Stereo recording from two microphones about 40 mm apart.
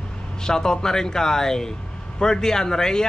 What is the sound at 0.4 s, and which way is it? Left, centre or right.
Speech, centre.